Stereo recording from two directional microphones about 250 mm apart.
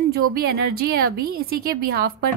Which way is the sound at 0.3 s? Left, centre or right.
Right.